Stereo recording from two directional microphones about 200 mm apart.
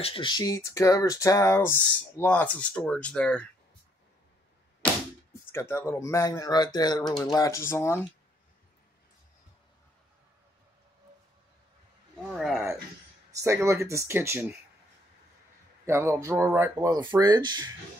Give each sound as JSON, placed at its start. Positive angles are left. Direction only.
{"t": 0.0, "sound": "speech", "side_deg": 25}
{"t": 5.5, "sound": "speech", "side_deg": 15}
{"t": 12.3, "sound": "a sound", "side_deg": 0}
{"t": 13.3, "sound": "speech", "side_deg": -15}
{"t": 15.8, "sound": "speech", "side_deg": -15}